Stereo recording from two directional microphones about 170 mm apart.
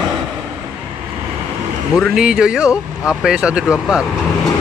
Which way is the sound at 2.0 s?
5° right (ahead or behind).